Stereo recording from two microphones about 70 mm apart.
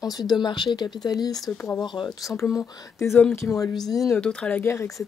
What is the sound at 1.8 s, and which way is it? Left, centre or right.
Speech, left.